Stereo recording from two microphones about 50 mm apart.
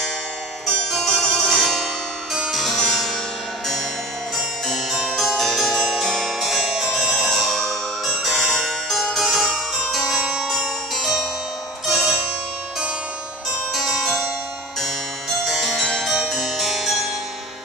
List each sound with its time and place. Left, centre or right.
0.7 s harpsichord: centre
4.6 s music: centre
6.4 s music: centre
7.2 s music: centre
10.1 s music: centre
11.8 s zither: centre
13.7 s harpsichord: centre
14.8 s music: centre
16.3 s harpsichord: centre